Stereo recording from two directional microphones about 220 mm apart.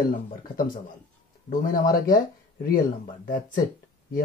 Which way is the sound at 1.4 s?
40° left (ahead or behind).